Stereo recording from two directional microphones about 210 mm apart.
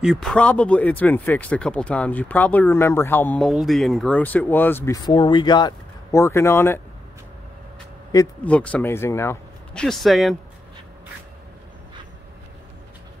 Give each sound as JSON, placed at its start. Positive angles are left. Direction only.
{"t": 0.0, "sound": "speech", "side_deg": 0}
{"t": 8.1, "sound": "speech", "side_deg": 15}
{"t": 8.5, "sound": "speech", "side_deg": 5}